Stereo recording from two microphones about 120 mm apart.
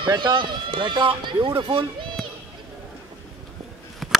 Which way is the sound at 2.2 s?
Centre (ahead or behind).